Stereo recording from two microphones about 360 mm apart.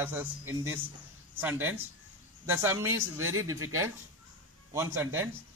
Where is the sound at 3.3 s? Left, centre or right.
Right.